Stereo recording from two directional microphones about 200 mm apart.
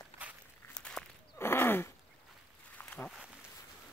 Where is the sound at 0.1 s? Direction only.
30° left (ahead or behind).